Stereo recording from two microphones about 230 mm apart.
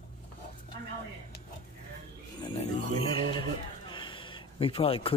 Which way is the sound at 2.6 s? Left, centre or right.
Left.